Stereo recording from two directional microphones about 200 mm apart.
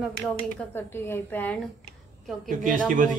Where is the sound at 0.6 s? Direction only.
10° left (ahead or behind).